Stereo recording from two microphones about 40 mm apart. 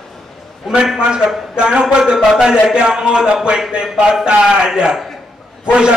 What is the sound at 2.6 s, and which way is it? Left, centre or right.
A man's voice, centre.